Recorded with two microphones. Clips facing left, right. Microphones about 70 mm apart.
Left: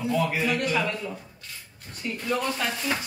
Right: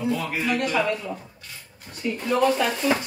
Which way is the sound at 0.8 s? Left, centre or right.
Right.